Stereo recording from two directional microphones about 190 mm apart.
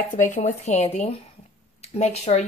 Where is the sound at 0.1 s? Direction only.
40° left (ahead or behind).